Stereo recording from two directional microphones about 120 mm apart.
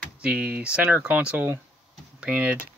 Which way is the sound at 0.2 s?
10° right (ahead or behind).